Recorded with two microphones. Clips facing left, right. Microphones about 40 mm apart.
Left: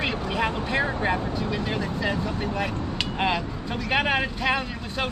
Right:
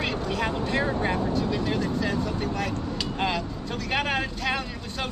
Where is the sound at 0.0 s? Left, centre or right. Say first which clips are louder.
Left 2 dB; centre.